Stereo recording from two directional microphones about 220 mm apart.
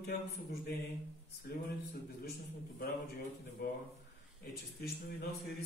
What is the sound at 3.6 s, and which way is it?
Speech, 45° left (ahead or behind).